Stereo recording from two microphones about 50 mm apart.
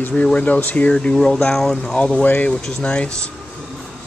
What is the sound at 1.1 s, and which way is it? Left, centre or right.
Speech, centre.